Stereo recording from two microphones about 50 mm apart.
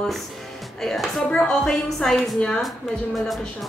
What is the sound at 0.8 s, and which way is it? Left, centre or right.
A woman's voice, centre.